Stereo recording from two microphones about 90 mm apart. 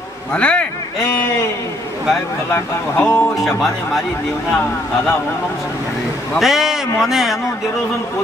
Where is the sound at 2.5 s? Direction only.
25° left (ahead or behind).